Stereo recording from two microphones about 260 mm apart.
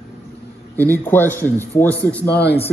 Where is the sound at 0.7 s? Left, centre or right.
Centre.